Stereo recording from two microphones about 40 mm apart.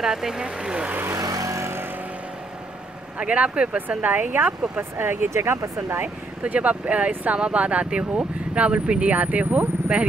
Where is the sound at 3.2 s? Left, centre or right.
Right.